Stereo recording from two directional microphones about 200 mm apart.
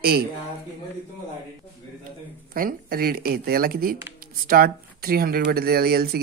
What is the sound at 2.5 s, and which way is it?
Speech, 45° right (ahead or behind).